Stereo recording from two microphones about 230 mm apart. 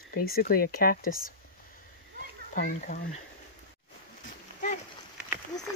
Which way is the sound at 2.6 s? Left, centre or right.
Left.